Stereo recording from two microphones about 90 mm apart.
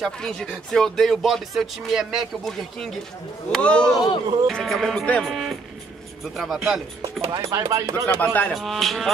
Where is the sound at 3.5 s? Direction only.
10° left (ahead or behind).